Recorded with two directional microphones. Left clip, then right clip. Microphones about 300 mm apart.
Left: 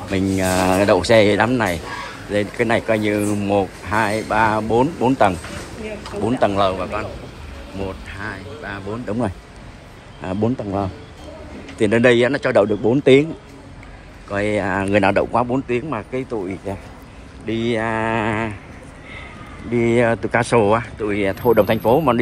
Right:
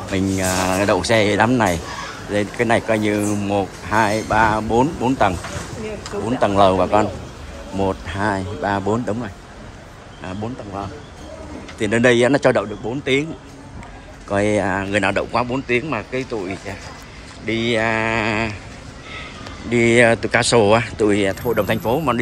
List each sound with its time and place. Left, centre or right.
0.1 s speech: centre
10.4 s a man's voice: left
11.8 s speech: centre
13.0 s speech: centre
14.3 s speech: centre
19.7 s speech: centre